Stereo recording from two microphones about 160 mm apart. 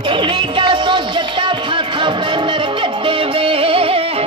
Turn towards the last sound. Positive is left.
turn(degrees=-35)  # may be behind; listen again after turning